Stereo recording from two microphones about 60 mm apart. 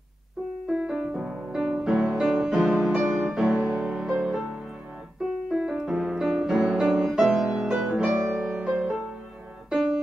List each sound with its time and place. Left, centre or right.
0.7 s music: centre
5.7 s music: centre
8.4 s music: centre